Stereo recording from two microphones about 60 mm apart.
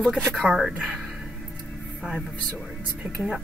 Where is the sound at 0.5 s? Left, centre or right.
Centre.